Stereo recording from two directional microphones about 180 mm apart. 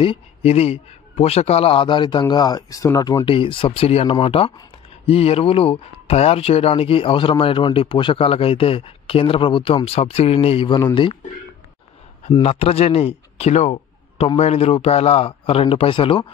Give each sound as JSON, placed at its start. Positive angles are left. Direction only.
{"t": 0.0, "sound": "a man's voice", "side_deg": 35}
{"t": 12.3, "sound": "a man's voice", "side_deg": 30}